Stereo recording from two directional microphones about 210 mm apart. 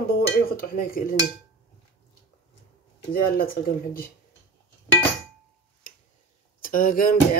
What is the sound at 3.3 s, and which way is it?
Speech, 45° left (ahead or behind).